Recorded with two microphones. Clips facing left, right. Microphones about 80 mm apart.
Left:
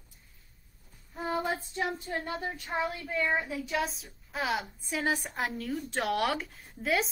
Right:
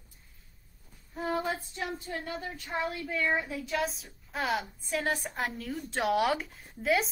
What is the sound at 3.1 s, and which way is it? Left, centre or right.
Speech, centre.